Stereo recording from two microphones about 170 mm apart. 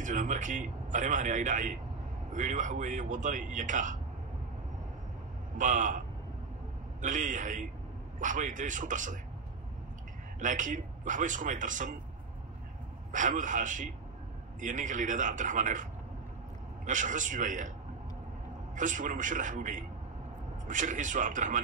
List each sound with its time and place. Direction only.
0.0 s a man's voice: 50° right (ahead or behind)
5.6 s a man's voice: 50° right (ahead or behind)
10.4 s a man's voice: 50° right (ahead or behind)
13.1 s a man's voice: 50° right (ahead or behind)
18.8 s a man's voice: 50° right (ahead or behind)